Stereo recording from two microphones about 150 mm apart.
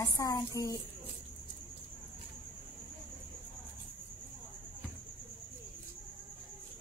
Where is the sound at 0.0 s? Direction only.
25° left (ahead or behind).